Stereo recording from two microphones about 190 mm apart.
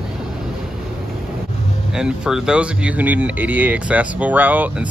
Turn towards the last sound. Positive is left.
turn(degrees=-10)  # may be behind; listen again after turning